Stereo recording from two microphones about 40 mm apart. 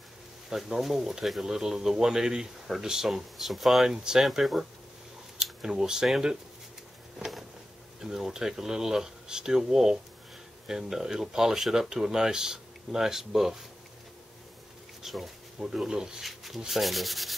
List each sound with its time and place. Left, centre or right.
0.5 s speech: centre
3.8 s speech: centre
4.2 s sanding: centre
5.4 s speech: centre
8.0 s speech: centre
15.0 s a sound: centre
15.6 s speech: centre
16.3 s sanding: centre